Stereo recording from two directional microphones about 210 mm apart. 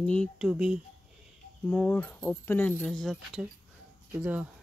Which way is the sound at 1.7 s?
5° left (ahead or behind).